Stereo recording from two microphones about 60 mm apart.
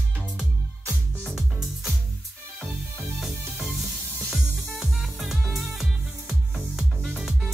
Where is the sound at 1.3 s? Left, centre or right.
Centre.